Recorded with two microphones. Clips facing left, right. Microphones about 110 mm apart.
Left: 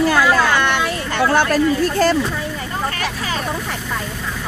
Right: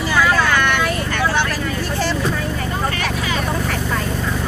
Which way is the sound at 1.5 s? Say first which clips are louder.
Left 7 dB; 45° left (ahead or behind).